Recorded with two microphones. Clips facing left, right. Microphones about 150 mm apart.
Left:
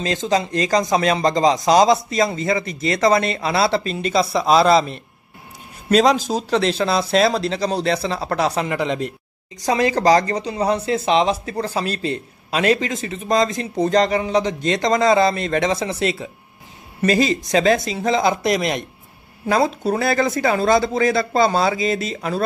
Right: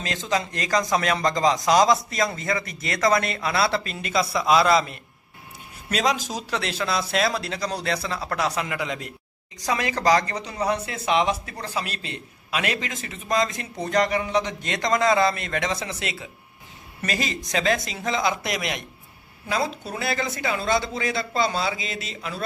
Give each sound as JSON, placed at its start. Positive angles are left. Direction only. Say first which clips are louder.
{"t": 0.0, "sound": "a man's voice", "louder": "left 6 dB", "side_deg": 30}